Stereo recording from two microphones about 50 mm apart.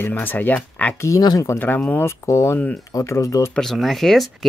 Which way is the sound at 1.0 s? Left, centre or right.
Left.